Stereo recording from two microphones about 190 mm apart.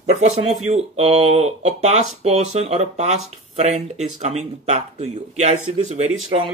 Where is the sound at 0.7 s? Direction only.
35° right (ahead or behind).